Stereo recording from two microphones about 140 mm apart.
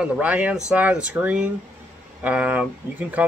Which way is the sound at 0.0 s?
10° right (ahead or behind).